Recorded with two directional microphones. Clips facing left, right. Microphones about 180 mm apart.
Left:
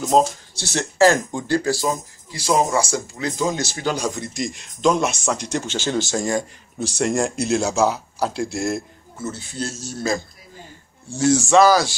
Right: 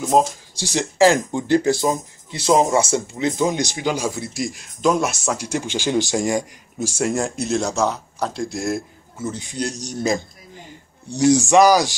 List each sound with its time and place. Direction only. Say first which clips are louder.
0.1 s speech: even; 15° right (ahead or behind)
7.0 s speech: left 1 dB; 5° right (ahead or behind)
9.2 s speech: right 2 dB; 15° right (ahead or behind)